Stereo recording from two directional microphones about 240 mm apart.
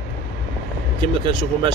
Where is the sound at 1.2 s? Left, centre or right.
Centre.